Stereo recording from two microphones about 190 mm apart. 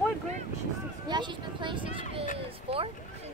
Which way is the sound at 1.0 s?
25° right (ahead or behind).